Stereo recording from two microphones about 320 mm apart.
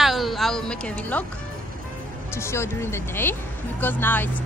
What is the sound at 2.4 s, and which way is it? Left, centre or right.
Speech, centre.